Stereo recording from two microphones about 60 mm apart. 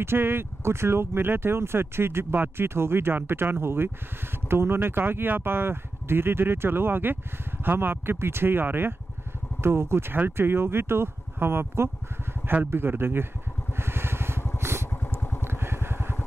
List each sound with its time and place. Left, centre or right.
0.0 s speech: right
13.7 s vehicle: right